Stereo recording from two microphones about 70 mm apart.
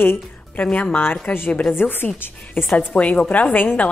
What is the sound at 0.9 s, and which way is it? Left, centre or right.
A woman's voice, left.